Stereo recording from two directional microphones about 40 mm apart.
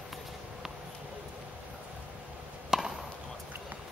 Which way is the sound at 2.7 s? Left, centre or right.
Centre.